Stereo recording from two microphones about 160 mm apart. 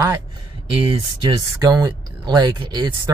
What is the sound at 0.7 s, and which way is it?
Speech, 35° right (ahead or behind).